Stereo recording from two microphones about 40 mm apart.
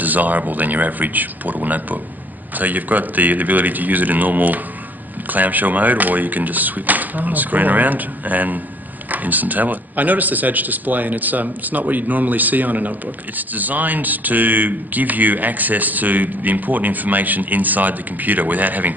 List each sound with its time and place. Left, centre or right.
0.0 s speech: right